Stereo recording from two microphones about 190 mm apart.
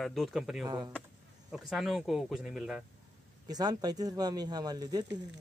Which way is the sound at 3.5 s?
20° right (ahead or behind).